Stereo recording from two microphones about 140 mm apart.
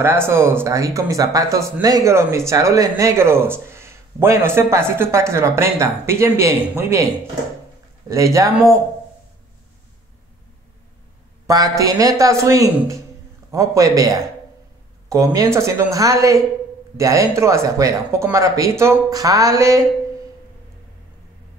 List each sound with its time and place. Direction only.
0.0 s speech: 15° right (ahead or behind)
8.1 s speech: 20° right (ahead or behind)
11.4 s speech: 25° right (ahead or behind)